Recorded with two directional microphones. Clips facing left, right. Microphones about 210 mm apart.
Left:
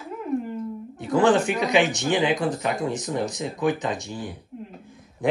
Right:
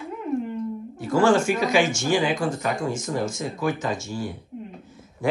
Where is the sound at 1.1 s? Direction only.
20° left (ahead or behind).